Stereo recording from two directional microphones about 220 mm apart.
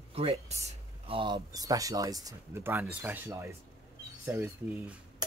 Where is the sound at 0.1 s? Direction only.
25° right (ahead or behind).